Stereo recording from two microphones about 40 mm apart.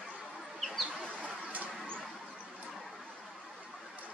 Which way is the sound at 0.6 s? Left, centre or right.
Centre.